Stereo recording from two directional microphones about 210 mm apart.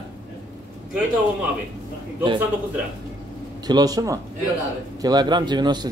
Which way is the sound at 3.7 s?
20° right (ahead or behind).